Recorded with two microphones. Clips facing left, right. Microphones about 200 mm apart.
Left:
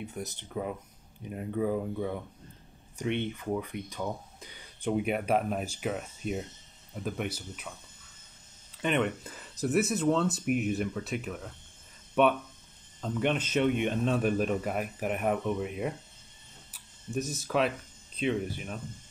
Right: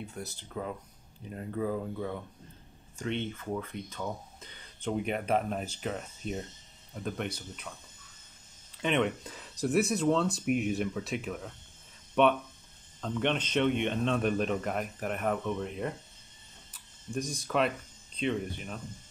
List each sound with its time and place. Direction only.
0.0 s speech: 20° left (ahead or behind)
8.7 s speech: centre (ahead or behind)